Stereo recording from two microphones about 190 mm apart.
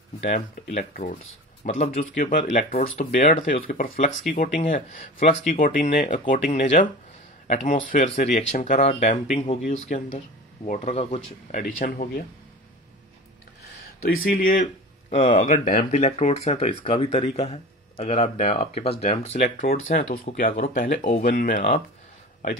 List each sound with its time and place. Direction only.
0.2 s speech: 40° left (ahead or behind)
1.6 s speech: 40° left (ahead or behind)
14.0 s speech: 50° left (ahead or behind)